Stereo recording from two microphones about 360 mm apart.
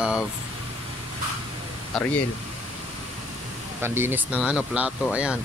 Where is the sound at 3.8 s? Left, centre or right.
Centre.